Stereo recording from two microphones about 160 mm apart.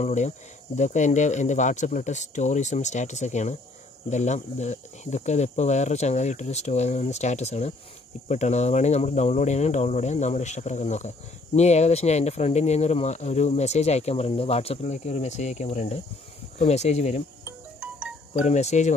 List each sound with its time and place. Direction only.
0.0 s speech: 45° left (ahead or behind)
17.5 s music: 5° right (ahead or behind)
18.4 s speech: 45° left (ahead or behind)